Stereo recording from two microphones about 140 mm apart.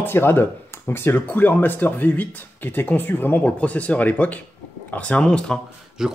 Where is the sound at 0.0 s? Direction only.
15° left (ahead or behind).